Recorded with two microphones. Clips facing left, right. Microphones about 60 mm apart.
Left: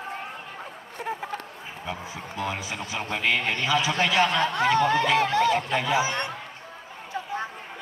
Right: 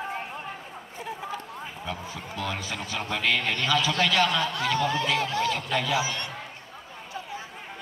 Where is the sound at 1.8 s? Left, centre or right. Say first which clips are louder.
Left 3 dB; centre.